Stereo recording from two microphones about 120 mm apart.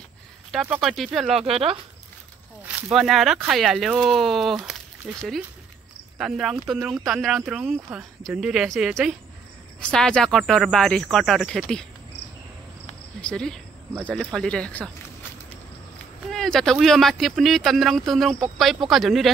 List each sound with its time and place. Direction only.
0.5 s speech: centre (ahead or behind)
1.4 s speech: 55° right (ahead or behind)
2.9 s speech: centre (ahead or behind)
6.1 s speech: centre (ahead or behind)
13.2 s speech: 5° left (ahead or behind)
16.3 s a sound: 5° left (ahead or behind)
16.8 s speech: centre (ahead or behind)